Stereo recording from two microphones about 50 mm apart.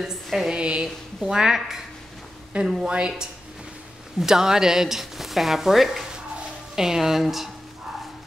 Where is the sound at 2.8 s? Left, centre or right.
Centre.